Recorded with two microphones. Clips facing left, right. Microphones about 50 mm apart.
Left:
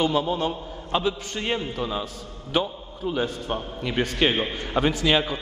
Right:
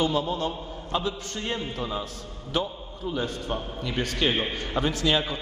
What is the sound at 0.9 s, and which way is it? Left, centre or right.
Speech, left.